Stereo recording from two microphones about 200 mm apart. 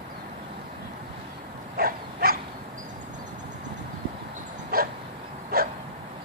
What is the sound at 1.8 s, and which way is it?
Dog, 45° right (ahead or behind).